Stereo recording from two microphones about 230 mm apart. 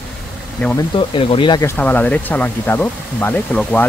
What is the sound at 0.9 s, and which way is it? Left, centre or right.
Speech, left.